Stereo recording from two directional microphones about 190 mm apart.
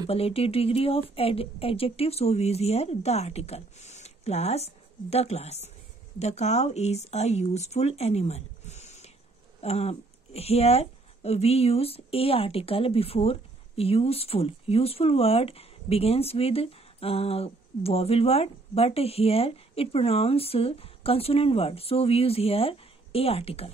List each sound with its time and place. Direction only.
0.0 s speech: 30° left (ahead or behind)